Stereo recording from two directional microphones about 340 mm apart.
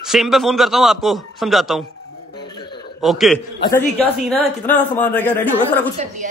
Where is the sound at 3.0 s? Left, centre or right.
Centre.